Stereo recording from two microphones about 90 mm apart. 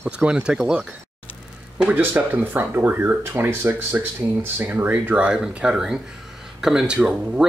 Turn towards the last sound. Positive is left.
turn(degrees=-10)  # may be behind; listen again after turning